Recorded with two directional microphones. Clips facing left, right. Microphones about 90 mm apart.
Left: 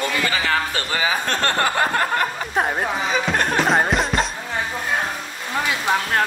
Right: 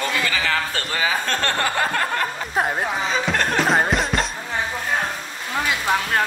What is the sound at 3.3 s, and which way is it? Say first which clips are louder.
Music: left 1 dB; 5° left (ahead or behind).